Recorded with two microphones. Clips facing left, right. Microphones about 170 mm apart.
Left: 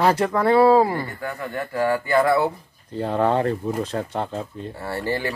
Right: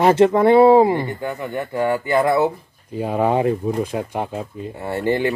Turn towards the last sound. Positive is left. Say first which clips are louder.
# right 6 dB
turn(degrees=-20)  # may be behind; listen again after turning